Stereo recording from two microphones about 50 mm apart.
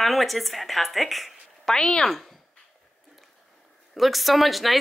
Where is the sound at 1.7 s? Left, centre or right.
Centre.